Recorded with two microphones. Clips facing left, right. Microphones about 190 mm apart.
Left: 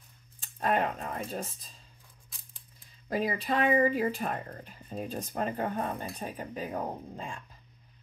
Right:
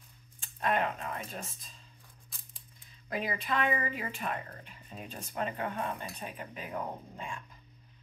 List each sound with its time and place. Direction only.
0.4 s speech: 40° left (ahead or behind)
3.1 s speech: 35° left (ahead or behind)